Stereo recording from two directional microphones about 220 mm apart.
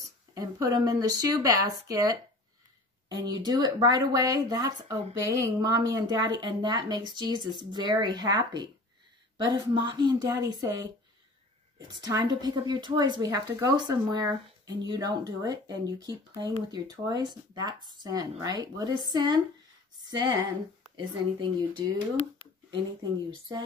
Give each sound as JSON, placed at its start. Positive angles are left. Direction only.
{"t": 0.3, "sound": "speech", "side_deg": -15}
{"t": 11.9, "sound": "speech", "side_deg": -20}